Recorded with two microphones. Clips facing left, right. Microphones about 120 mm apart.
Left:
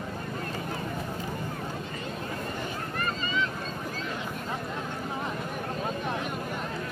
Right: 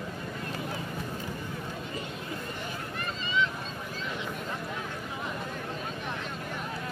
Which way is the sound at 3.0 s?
45° left (ahead or behind).